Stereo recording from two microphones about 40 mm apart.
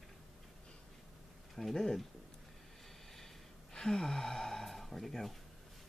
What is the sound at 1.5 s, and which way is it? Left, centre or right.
Speech, centre.